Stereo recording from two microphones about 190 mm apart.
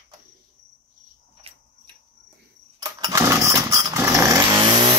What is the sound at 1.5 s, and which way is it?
Cricket, 30° right (ahead or behind).